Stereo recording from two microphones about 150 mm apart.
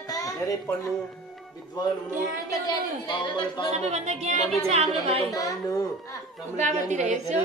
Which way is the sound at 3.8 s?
45° right (ahead or behind).